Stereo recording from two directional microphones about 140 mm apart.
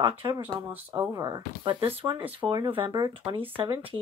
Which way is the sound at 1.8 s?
45° right (ahead or behind).